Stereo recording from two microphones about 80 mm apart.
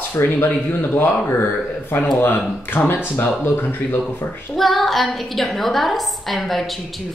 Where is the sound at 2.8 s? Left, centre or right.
Left.